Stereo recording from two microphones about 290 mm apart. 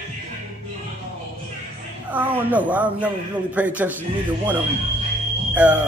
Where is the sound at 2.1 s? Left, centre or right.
Centre.